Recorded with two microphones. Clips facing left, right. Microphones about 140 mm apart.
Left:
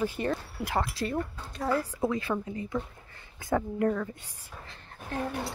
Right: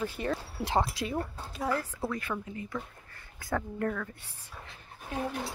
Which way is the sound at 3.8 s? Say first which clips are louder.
Left 5 dB; 15° left (ahead or behind).